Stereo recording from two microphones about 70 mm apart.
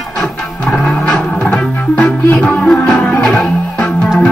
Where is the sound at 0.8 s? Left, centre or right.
Centre.